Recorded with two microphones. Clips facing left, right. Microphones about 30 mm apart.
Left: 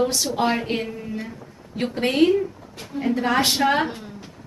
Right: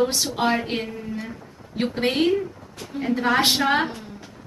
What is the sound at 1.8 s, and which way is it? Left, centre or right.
Speech, centre.